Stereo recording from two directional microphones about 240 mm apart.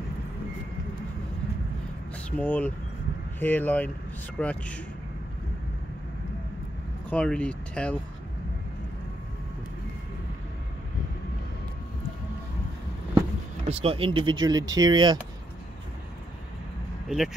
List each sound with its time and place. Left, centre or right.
2.3 s speech: centre
7.1 s speech: centre
13.7 s speech: right
17.1 s speech: centre